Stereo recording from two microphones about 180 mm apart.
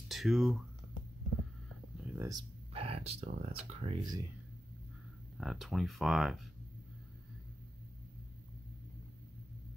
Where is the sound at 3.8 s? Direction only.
20° right (ahead or behind).